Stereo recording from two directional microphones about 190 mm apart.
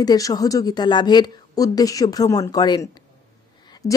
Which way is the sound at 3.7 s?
20° left (ahead or behind).